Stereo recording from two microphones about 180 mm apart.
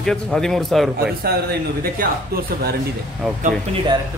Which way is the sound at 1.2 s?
60° right (ahead or behind).